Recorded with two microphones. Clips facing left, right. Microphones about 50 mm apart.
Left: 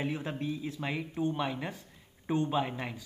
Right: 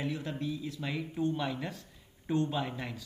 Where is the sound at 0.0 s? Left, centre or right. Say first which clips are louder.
Left 1 dB; left.